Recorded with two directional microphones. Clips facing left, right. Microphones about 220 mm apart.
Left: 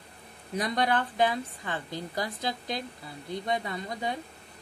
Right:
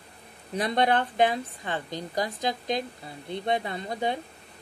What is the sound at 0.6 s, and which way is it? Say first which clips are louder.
Speech: right 3 dB; 25° right (ahead or behind).